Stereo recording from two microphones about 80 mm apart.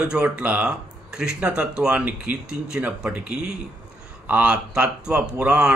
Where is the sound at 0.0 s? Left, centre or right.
Centre.